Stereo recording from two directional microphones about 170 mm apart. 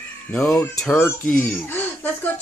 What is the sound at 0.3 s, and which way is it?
Speech, 10° left (ahead or behind).